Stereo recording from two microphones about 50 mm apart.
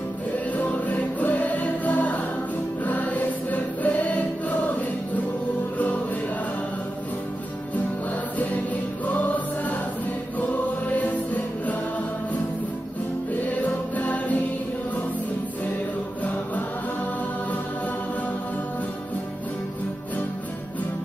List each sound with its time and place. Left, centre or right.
0.6 s music: left
2.8 s choir: left
9.0 s music: left
13.6 s music: left